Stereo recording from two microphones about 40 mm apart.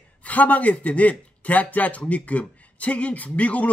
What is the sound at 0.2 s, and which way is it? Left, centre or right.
Speech, left.